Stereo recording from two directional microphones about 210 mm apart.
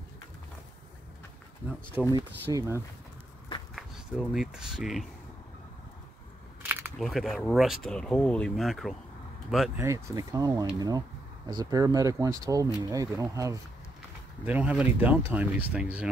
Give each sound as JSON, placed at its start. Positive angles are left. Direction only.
{"t": 2.1, "sound": "speech", "side_deg": -15}
{"t": 3.7, "sound": "speech", "side_deg": 0}
{"t": 6.7, "sound": "speech", "side_deg": -5}
{"t": 9.8, "sound": "speech", "side_deg": -15}